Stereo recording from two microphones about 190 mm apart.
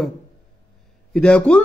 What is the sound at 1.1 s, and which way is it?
Speech, 5° left (ahead or behind).